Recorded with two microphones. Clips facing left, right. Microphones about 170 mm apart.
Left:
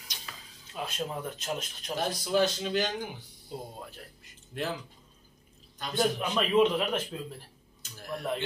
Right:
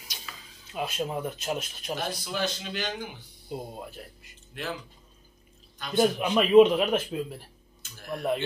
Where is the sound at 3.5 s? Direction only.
10° right (ahead or behind).